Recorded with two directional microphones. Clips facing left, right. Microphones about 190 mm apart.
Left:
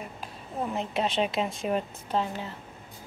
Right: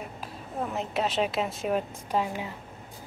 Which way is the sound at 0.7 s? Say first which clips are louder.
Even; 5° right (ahead or behind).